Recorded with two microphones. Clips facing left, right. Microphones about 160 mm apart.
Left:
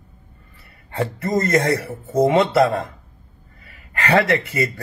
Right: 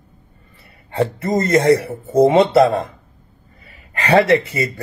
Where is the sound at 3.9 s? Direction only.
25° right (ahead or behind).